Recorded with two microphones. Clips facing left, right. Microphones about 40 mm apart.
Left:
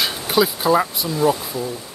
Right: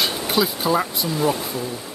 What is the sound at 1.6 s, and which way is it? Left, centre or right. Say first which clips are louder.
Speech: left 2 dB; right.